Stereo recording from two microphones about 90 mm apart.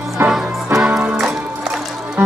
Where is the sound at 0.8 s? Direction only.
10° right (ahead or behind).